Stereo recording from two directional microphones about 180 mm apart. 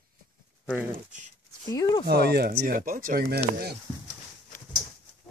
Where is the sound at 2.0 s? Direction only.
65° right (ahead or behind).